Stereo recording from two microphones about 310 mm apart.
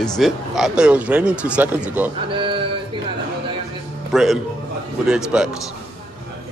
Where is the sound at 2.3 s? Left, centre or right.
Centre.